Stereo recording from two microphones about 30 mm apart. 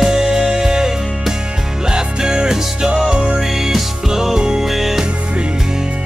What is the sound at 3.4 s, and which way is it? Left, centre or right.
Music, centre.